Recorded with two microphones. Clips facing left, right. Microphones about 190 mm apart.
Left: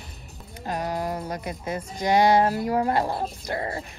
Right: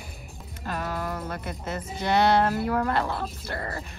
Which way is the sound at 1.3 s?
10° left (ahead or behind).